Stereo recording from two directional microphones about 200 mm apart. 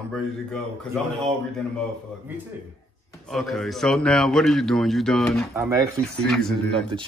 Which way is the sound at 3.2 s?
Centre (ahead or behind).